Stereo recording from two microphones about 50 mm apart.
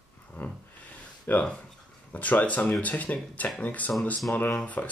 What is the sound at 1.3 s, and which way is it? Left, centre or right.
Speech, left.